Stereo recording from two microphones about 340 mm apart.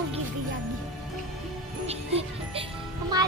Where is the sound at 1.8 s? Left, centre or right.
Centre.